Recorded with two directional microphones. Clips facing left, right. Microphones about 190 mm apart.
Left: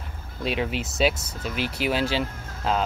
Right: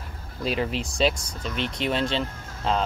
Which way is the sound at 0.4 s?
Centre (ahead or behind).